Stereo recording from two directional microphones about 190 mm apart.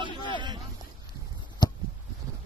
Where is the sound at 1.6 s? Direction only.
25° left (ahead or behind).